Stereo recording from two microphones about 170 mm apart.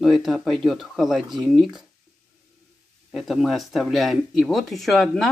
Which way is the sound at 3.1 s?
Centre (ahead or behind).